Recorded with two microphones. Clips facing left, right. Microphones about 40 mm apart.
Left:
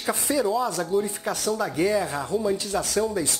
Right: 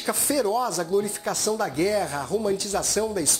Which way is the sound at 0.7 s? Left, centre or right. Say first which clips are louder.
Even; centre.